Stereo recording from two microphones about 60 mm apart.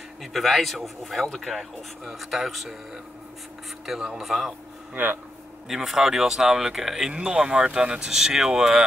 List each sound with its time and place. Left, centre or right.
0.2 s speech: centre
3.8 s speech: centre
4.9 s speech: right
5.7 s speech: centre